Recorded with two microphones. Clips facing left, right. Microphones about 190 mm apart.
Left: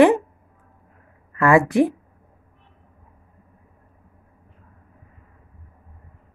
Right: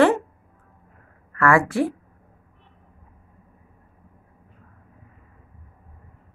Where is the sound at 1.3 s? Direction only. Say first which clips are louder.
Left 3 dB; 20° left (ahead or behind).